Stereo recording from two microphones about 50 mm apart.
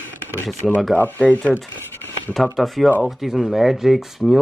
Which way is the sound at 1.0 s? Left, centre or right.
Left.